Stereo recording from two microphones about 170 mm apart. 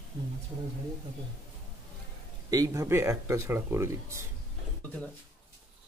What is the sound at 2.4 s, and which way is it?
Speech, 20° right (ahead or behind).